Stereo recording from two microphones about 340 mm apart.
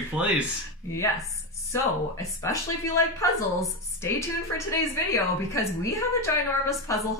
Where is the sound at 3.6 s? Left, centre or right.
Centre.